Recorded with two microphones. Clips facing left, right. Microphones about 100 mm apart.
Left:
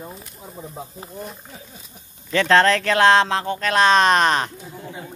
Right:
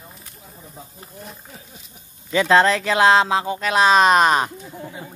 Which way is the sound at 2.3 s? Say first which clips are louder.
Even; 5° right (ahead or behind).